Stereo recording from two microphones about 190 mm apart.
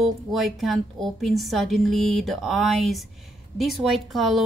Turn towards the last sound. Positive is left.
turn(degrees=0)  # may be behind; listen again after turning